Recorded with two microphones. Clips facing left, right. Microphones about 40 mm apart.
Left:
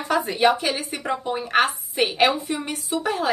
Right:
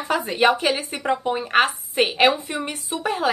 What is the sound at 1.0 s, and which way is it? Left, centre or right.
A woman's voice, right.